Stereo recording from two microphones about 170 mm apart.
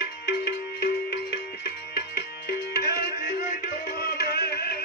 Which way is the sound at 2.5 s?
70° left (ahead or behind).